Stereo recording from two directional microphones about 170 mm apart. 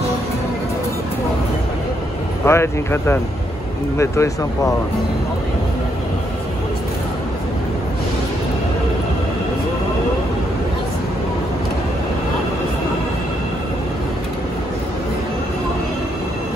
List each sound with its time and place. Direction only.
2.4 s speech: 15° left (ahead or behind)